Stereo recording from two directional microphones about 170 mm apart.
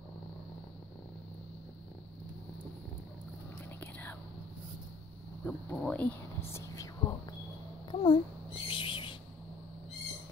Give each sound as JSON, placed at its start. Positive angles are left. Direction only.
{"t": 3.8, "sound": "whispering", "side_deg": 10}
{"t": 5.4, "sound": "speech", "side_deg": 10}
{"t": 7.9, "sound": "babbling", "side_deg": 30}
{"t": 8.6, "sound": "owl", "side_deg": 30}